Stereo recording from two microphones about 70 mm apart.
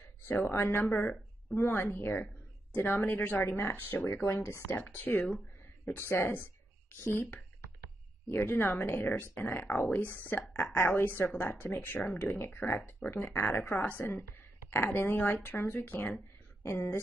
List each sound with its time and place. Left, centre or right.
0.2 s a woman's voice: left
4.0 s speech: left
4.7 s a woman's voice: left
16.6 s speech: left